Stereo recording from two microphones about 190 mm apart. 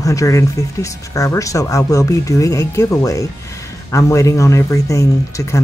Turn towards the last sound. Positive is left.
turn(degrees=15)  # may be behind; listen again after turning